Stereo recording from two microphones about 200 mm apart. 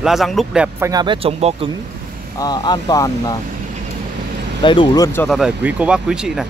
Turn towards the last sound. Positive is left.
turn(degrees=-5)  # may be behind; listen again after turning